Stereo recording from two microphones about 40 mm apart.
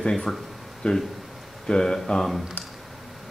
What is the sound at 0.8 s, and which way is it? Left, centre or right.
Speech, centre.